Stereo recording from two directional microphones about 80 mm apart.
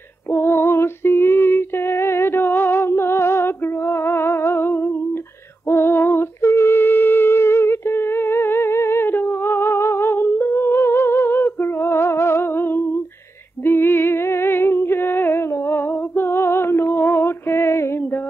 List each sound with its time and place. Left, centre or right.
0.3 s female singing: left
5.7 s humming: left
13.7 s music: left